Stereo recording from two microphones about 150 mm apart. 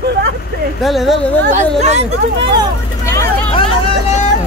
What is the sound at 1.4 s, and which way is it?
Speech, 50° right (ahead or behind).